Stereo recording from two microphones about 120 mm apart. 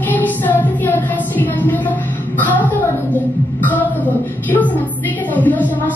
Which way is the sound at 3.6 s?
15° left (ahead or behind).